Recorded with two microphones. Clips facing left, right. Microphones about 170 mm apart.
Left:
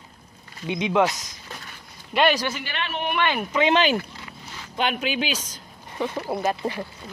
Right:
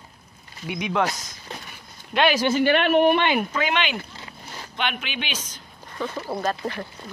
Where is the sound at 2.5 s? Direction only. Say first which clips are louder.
Right 13 dB; 55° right (ahead or behind).